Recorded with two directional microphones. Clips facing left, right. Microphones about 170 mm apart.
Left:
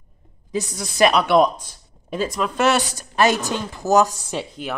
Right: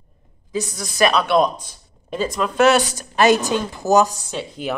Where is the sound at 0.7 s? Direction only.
20° left (ahead or behind).